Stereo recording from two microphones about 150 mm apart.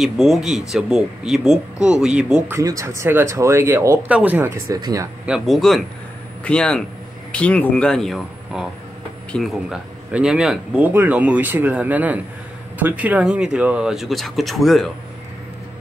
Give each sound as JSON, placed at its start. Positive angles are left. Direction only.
{"t": 0.0, "sound": "speech", "side_deg": 0}
{"t": 2.5, "sound": "speech", "side_deg": -20}
{"t": 4.7, "sound": "speech", "side_deg": -25}
{"t": 5.2, "sound": "speech", "side_deg": -5}